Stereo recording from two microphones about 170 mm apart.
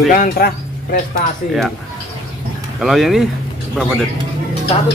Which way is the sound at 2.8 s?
Centre (ahead or behind).